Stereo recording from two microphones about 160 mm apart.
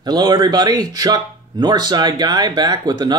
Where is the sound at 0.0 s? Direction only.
25° right (ahead or behind).